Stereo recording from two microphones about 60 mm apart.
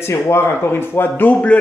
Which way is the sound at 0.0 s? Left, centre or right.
Left.